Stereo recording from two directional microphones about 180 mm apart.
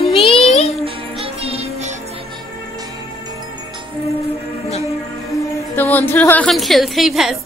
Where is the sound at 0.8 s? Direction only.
35° right (ahead or behind).